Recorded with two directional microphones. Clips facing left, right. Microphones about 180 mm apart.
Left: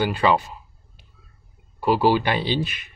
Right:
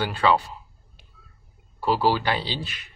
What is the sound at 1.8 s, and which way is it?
A man's voice, 15° left (ahead or behind).